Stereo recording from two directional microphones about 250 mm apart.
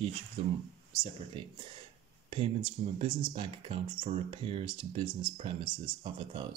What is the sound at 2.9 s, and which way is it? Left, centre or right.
Speech, right.